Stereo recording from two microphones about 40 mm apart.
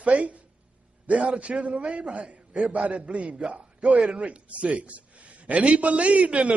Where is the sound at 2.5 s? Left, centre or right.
Centre.